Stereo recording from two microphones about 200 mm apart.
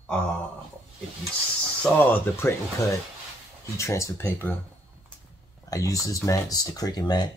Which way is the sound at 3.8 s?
15° left (ahead or behind).